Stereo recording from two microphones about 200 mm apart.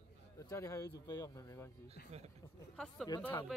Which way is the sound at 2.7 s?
5° left (ahead or behind).